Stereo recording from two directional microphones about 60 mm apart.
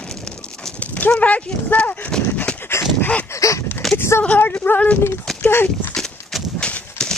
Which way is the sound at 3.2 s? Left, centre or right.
Left.